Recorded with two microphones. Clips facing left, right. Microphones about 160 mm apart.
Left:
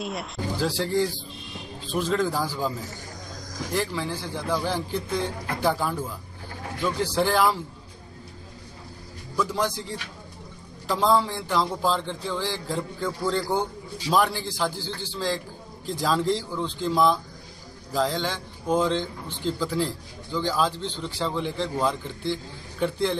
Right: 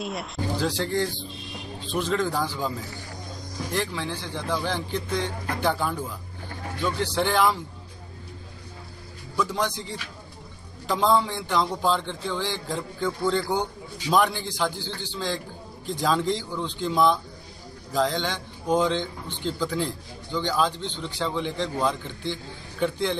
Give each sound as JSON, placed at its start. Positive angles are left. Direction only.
{"t": 0.0, "sound": "speech", "side_deg": 0}
{"t": 3.7, "sound": "a man's voice", "side_deg": 5}
{"t": 9.4, "sound": "a man's voice", "side_deg": 5}
{"t": 20.7, "sound": "speech", "side_deg": 35}
{"t": 21.0, "sound": "a man's voice", "side_deg": 0}